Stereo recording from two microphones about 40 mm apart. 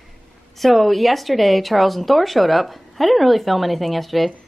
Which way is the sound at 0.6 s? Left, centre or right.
Centre.